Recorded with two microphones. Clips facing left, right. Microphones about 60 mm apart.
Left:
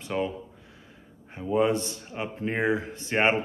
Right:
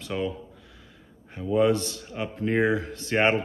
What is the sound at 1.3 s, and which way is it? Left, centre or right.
Speech, left.